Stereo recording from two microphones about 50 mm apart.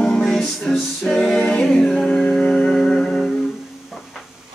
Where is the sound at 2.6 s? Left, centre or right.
Centre.